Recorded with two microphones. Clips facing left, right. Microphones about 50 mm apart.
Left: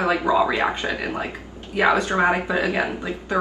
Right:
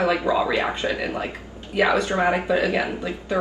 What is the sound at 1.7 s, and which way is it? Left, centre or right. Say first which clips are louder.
A woman's voice: left 1 dB; left.